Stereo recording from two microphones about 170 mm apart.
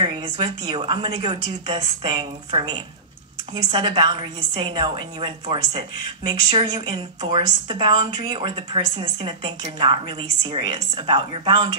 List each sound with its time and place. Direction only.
0.0 s a woman's voice: 25° right (ahead or behind)